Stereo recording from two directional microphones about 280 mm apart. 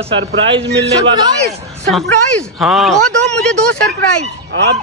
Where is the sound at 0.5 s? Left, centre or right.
Centre.